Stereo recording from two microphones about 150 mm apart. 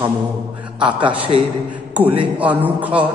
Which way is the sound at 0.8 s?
10° right (ahead or behind).